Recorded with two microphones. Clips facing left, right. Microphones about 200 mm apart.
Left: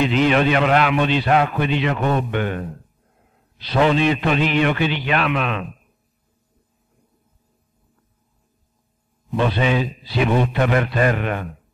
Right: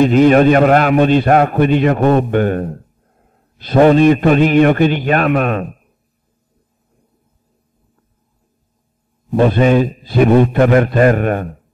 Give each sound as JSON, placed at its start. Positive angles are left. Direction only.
{"t": 0.0, "sound": "a man's voice", "side_deg": -45}
{"t": 9.3, "sound": "a man's voice", "side_deg": -45}